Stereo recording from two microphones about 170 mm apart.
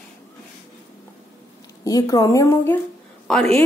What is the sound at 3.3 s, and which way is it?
Speech, 5° left (ahead or behind).